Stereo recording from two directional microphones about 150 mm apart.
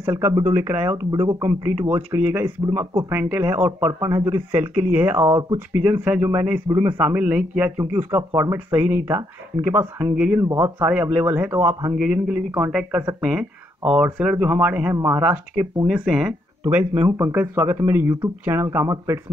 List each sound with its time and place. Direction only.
0.0 s speech: 15° right (ahead or behind)
5.2 s speech: 25° right (ahead or behind)
5.9 s speech: 10° right (ahead or behind)
6.7 s a man's voice: 30° right (ahead or behind)
7.0 s speech: 10° right (ahead or behind)
11.9 s speech: 5° right (ahead or behind)